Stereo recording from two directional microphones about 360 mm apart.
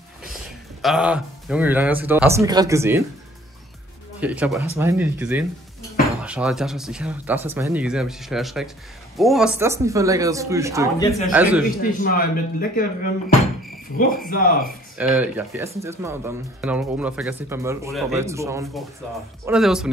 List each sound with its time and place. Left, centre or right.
0.8 s speech: centre
4.2 s speech: centre
11.0 s speech: centre
11.3 s speech: centre
11.8 s speech: left
15.0 s speech: centre